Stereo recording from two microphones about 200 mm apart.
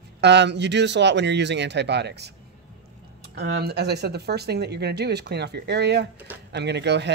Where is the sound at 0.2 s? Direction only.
60° right (ahead or behind).